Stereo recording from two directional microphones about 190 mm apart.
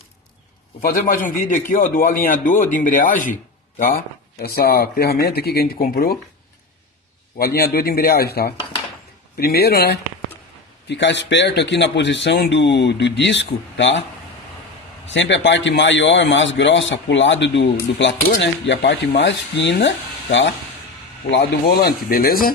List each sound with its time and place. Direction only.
0.7 s speech: 50° left (ahead or behind)
7.3 s speech: 55° left (ahead or behind)
10.9 s speech: 65° left (ahead or behind)
15.0 s speech: 70° left (ahead or behind)
21.3 s speech: 65° left (ahead or behind)